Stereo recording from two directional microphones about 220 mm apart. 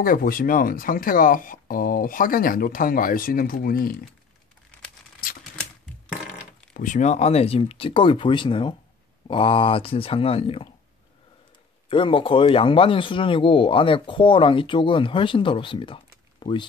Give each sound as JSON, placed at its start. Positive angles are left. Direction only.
{"t": 0.0, "sound": "speech", "side_deg": 40}
{"t": 5.2, "sound": "typewriter", "side_deg": 40}
{"t": 6.7, "sound": "speech", "side_deg": 35}
{"t": 11.9, "sound": "speech", "side_deg": 25}